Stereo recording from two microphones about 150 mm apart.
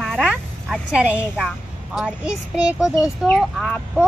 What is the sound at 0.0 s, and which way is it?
A woman's voice, 5° right (ahead or behind).